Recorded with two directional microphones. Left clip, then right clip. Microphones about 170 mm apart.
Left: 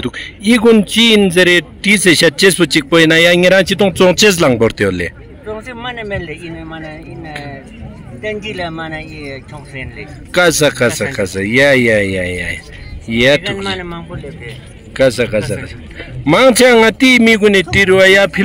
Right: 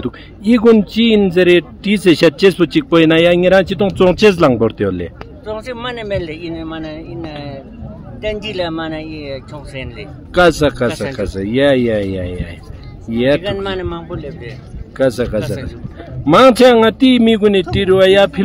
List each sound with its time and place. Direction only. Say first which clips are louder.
0.0 s a man's voice: left 3 dB; 5° left (ahead or behind)
6.7 s speech: right 2 dB; 40° right (ahead or behind)
10.3 s a man's voice: left 1 dB; 5° left (ahead or behind)
13.7 s a man's voice: even; 75° right (ahead or behind)
15.0 s a man's voice: left 3 dB; centre (ahead or behind)